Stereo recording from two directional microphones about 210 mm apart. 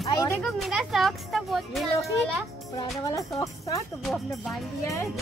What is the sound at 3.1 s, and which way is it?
Speech, 15° left (ahead or behind).